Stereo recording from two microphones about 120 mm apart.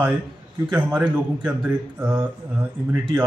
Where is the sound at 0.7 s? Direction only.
10° right (ahead or behind).